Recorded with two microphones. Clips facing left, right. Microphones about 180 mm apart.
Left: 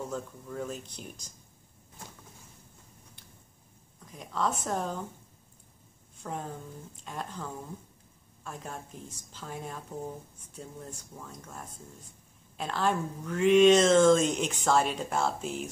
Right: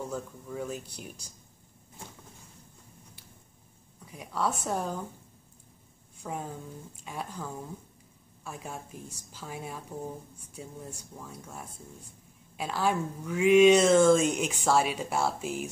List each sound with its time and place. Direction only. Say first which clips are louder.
0.1 s speech: even; 5° right (ahead or behind)
4.0 s speech: even; 10° right (ahead or behind)
6.2 s speech: right 1 dB; 10° right (ahead or behind)